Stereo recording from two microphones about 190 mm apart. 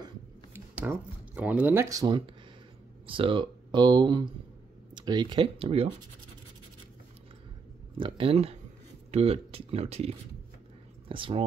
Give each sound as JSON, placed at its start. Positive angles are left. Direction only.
{"t": 0.0, "sound": "a sound", "side_deg": -10}
{"t": 3.1, "sound": "speech", "side_deg": -25}
{"t": 8.0, "sound": "speech", "side_deg": -30}